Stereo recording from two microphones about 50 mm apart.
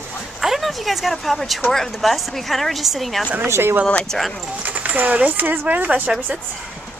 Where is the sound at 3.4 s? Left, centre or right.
Right.